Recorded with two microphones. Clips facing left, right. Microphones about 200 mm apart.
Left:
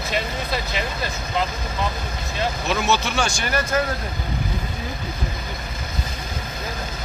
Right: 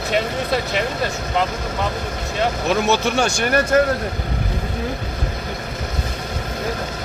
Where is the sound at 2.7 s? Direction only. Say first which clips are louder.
Right 4 dB; 50° right (ahead or behind).